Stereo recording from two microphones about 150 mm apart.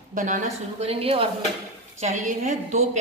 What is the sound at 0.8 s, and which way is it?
Speech, 40° right (ahead or behind).